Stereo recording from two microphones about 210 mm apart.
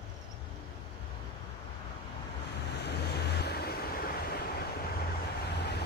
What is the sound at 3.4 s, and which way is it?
Vehicle, 50° left (ahead or behind).